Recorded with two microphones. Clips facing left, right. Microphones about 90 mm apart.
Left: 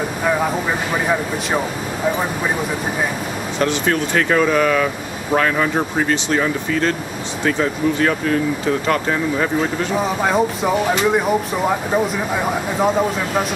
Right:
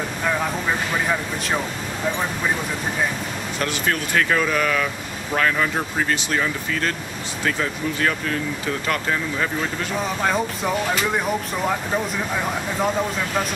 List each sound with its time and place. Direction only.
0.2 s speech: 10° left (ahead or behind)
3.5 s speech: 20° left (ahead or behind)
9.9 s speech: 5° left (ahead or behind)